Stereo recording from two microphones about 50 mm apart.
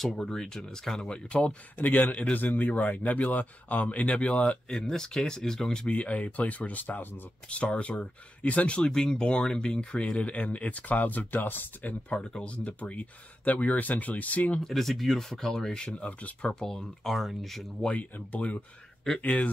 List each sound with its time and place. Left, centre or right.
0.2 s speech: centre
1.0 s speech: left
2.3 s speech: left
4.6 s speech: centre
5.9 s speech: left
7.4 s speech: left
12.2 s speech: centre
14.6 s speech: centre
15.9 s speech: left
16.4 s speech: centre
17.8 s speech: left